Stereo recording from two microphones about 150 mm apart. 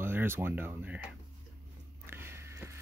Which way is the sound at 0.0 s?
15° right (ahead or behind).